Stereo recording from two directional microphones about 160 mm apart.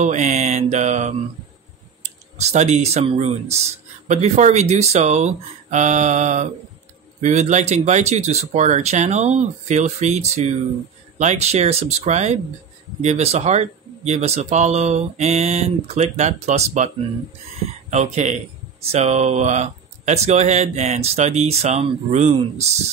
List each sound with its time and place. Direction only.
0.0 s speech: 45° right (ahead or behind)